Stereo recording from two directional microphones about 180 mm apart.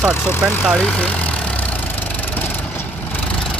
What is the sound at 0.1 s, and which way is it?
Speech, 10° left (ahead or behind).